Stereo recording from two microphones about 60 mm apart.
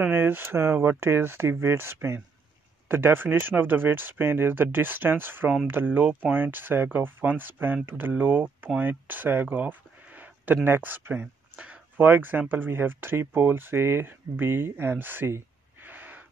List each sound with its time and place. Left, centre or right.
0.1 s speech: right